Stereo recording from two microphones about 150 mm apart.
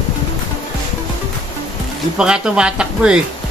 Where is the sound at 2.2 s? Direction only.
5° right (ahead or behind).